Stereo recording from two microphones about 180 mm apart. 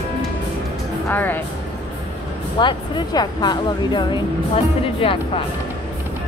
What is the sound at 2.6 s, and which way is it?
Speech, 25° left (ahead or behind).